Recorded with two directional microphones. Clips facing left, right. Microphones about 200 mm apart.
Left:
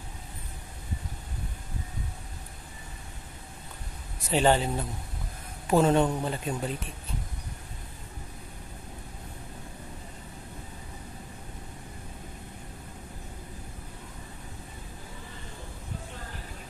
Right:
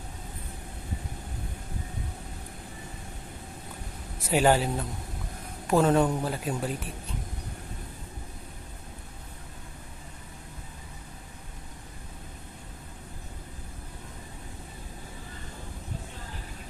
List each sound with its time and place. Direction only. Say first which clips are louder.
4.3 s speech: right 1 dB; 5° right (ahead or behind)